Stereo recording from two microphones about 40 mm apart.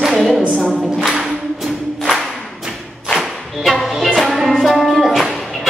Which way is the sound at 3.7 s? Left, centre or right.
Centre.